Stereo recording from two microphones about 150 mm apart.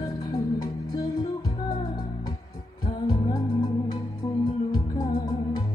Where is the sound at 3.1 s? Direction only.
25° left (ahead or behind).